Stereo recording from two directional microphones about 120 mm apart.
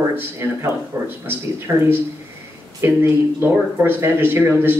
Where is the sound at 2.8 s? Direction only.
20° right (ahead or behind).